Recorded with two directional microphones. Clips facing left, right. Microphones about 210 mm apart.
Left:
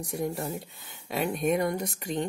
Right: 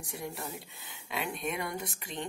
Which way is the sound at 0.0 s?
40° left (ahead or behind).